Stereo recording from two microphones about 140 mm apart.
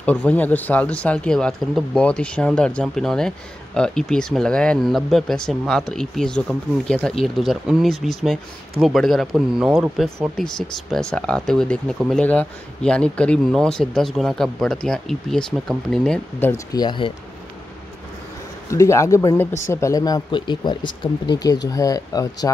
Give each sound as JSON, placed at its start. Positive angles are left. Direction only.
{"t": 0.0, "sound": "speech", "side_deg": 10}
{"t": 15.5, "sound": "speech", "side_deg": -5}
{"t": 16.1, "sound": "speech", "side_deg": 15}
{"t": 16.7, "sound": "speech", "side_deg": 35}
{"t": 18.7, "sound": "speech", "side_deg": 20}